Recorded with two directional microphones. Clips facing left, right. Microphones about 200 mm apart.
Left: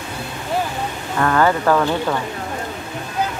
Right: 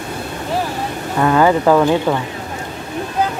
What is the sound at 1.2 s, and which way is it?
Speech, 15° right (ahead or behind).